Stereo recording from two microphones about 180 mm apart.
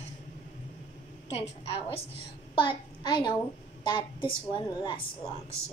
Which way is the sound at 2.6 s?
25° left (ahead or behind).